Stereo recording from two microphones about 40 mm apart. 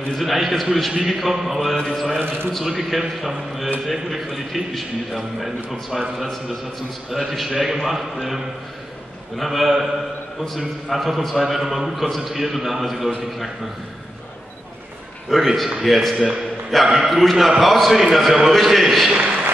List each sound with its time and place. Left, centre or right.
0.1 s a man's voice: centre
2.2 s a man's voice: right
2.6 s a man's voice: centre
7.1 s a man's voice: centre
9.4 s a man's voice: centre
15.2 s a man's voice: centre
18.2 s a man's voice: centre
18.5 s a man's voice: centre